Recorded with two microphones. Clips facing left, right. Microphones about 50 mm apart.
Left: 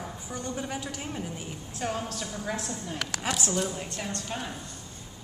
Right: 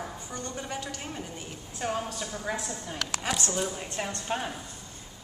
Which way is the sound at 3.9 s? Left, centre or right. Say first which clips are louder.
Right 3 dB; right.